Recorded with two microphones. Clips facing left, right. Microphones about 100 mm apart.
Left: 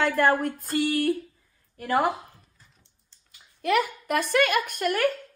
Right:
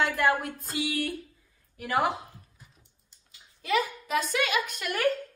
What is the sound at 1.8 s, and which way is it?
Speech, 35° left (ahead or behind).